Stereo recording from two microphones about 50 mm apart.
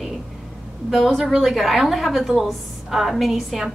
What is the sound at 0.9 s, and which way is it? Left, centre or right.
A woman's voice, centre.